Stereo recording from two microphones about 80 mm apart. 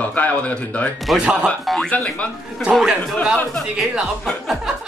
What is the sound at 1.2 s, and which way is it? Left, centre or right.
Speech, centre.